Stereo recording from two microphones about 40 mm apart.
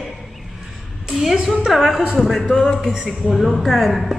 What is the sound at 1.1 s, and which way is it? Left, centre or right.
Speech, centre.